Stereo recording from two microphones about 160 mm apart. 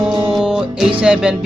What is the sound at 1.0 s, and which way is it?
Speech, 5° right (ahead or behind).